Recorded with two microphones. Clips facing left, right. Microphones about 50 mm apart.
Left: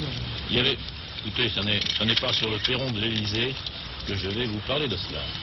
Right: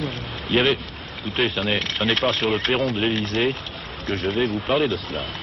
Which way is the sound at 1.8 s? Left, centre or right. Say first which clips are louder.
Right 5 dB; right.